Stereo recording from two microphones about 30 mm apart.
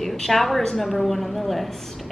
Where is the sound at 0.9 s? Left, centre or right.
Centre.